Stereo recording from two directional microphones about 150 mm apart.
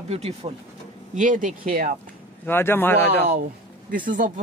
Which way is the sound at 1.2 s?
60° right (ahead or behind).